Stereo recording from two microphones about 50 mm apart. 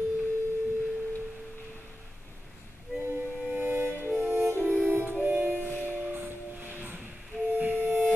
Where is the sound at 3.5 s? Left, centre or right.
Right.